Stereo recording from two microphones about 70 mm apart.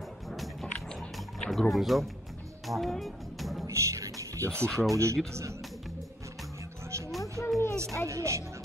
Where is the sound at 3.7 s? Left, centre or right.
Right.